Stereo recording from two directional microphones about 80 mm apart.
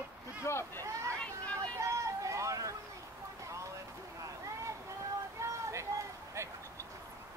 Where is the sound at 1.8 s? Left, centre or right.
Right.